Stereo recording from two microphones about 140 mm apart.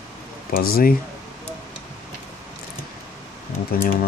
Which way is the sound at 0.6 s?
90° left.